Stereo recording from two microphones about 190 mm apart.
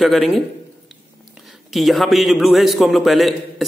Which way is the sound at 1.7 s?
Centre (ahead or behind).